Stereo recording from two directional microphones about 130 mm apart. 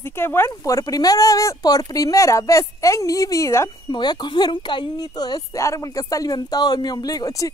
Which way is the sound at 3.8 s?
35° left (ahead or behind).